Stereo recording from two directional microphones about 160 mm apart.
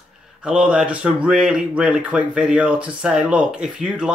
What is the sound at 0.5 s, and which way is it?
Speech, 5° right (ahead or behind).